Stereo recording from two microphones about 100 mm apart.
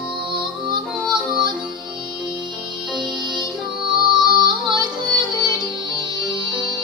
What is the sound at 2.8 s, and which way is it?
Music, centre (ahead or behind).